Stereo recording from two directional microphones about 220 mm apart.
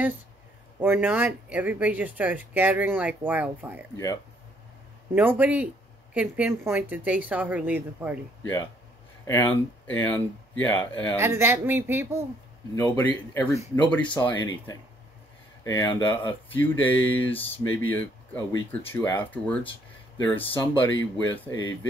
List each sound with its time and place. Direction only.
0.7 s speech: 10° right (ahead or behind)
3.9 s speech: 15° left (ahead or behind)
5.1 s speech: 10° right (ahead or behind)
9.2 s speech: 10° left (ahead or behind)
11.1 s speech: 10° right (ahead or behind)
12.9 s speech: 10° left (ahead or behind)
14.0 s speech: 20° left (ahead or behind)
16.5 s speech: 10° left (ahead or behind)